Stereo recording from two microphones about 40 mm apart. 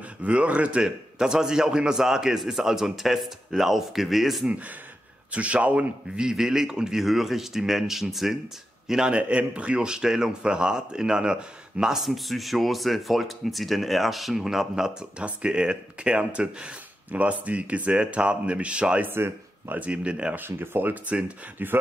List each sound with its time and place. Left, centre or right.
0.2 s speech: right
0.8 s a man's voice: centre
5.3 s speech: right
6.1 s a man's voice: centre
9.0 s speech: right; by 15.0 s centre
15.1 s speech: right
19.0 s speech: right
19.7 s speech: right
20.3 s speech: right
20.9 s speech: right
21.6 s speech: right